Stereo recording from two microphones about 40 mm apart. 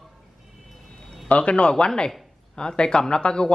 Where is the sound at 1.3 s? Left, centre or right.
Left.